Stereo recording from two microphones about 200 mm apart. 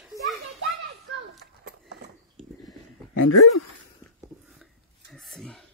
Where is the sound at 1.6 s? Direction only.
55° right (ahead or behind).